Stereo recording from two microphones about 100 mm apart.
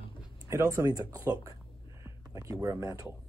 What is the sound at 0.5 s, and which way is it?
Speech, 30° right (ahead or behind).